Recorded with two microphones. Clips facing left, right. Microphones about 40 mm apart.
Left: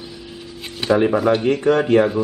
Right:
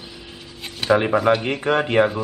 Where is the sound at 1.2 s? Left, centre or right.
Centre.